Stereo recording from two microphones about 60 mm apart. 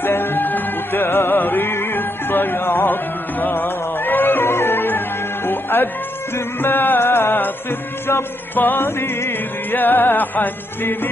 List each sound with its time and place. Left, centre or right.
0.0 s music: left